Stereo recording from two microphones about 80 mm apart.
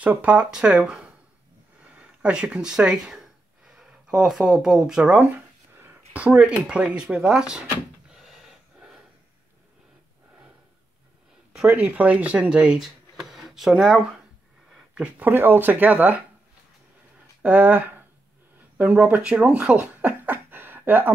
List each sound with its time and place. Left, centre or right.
0.0 s speech: centre
8.1 s a sound: centre
11.7 s speech: centre
15.0 s speech: right
17.4 s speech: centre